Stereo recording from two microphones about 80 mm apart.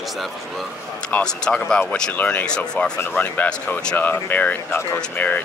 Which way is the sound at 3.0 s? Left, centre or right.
Left.